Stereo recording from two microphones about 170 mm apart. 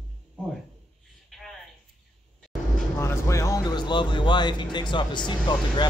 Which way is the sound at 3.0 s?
15° left (ahead or behind).